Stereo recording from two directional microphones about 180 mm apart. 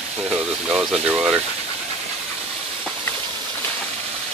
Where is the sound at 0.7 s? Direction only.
5° right (ahead or behind).